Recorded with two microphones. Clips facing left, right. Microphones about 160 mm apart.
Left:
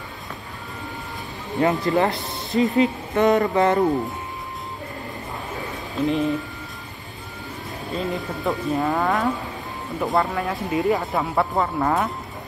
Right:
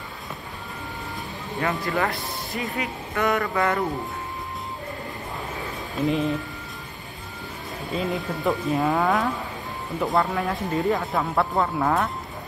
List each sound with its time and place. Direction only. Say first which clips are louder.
1.6 s speech: left 6 dB; 20° left (ahead or behind)
6.0 s speech: left 2 dB; centre (ahead or behind)
7.9 s speech: even; centre (ahead or behind)